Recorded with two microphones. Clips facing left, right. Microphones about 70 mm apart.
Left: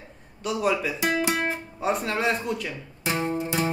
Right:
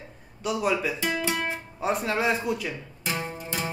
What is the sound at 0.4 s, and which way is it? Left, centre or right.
Speech, centre.